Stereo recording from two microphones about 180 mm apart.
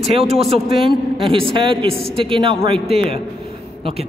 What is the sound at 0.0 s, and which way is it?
A man's voice, 35° right (ahead or behind).